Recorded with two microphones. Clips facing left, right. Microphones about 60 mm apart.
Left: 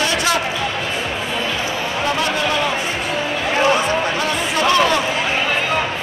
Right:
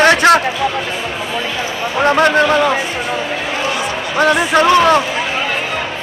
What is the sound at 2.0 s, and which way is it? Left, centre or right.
Speech, right.